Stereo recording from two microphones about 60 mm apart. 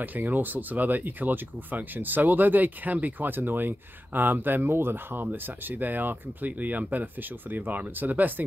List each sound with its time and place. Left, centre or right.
0.0 s speech: right